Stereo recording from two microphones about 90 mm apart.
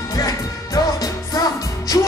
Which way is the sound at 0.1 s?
40° left (ahead or behind).